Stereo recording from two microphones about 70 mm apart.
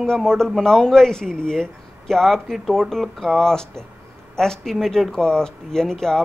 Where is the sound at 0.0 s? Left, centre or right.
Centre.